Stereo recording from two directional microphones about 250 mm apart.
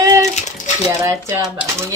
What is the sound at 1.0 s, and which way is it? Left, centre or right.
Speech, centre.